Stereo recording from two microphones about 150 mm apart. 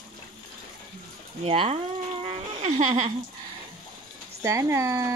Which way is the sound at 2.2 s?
40° right (ahead or behind).